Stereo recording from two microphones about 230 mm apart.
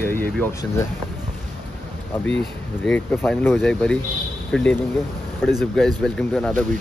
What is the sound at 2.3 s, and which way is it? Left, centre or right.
Speech, centre.